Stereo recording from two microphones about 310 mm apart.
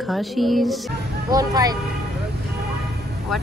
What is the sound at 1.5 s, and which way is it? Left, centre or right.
Speech, centre.